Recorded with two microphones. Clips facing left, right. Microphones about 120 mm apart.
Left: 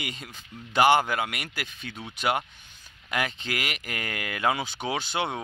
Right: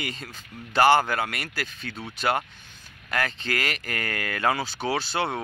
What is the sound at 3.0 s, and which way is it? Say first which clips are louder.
Speech: right 2 dB; 15° left (ahead or behind).